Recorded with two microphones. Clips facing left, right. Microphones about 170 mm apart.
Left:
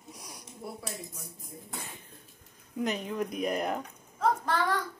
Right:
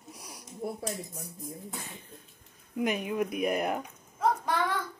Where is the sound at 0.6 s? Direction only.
50° right (ahead or behind).